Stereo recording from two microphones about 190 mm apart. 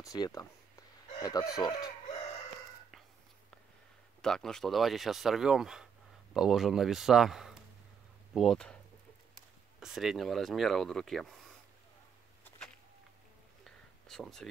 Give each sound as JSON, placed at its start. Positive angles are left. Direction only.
{"t": 0.0, "sound": "speech", "side_deg": 15}
{"t": 2.0, "sound": "chicken", "side_deg": 35}
{"t": 4.2, "sound": "speech", "side_deg": 5}
{"t": 9.8, "sound": "speech", "side_deg": 0}
{"t": 13.7, "sound": "a sound", "side_deg": 0}